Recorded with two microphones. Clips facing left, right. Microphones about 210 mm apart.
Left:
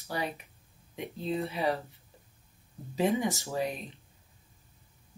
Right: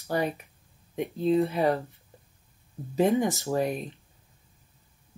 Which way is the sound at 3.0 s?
50° right (ahead or behind).